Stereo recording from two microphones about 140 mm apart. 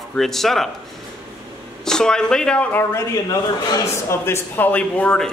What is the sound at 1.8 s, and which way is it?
Speech, 5° left (ahead or behind).